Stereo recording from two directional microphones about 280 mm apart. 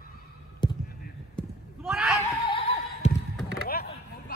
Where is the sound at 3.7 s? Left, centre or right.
Left.